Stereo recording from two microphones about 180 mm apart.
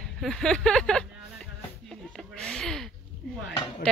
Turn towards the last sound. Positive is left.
turn(degrees=5)  # may be behind; listen again after turning